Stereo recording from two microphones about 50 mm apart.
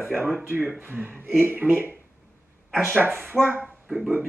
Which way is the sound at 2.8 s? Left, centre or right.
Right.